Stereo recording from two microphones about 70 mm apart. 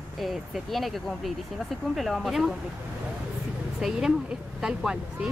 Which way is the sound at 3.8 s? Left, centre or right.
Centre.